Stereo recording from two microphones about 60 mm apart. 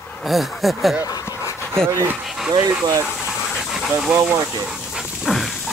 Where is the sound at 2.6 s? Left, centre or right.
Right.